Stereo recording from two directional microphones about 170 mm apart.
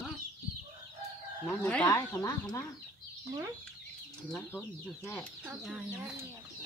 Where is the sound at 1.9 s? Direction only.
20° left (ahead or behind).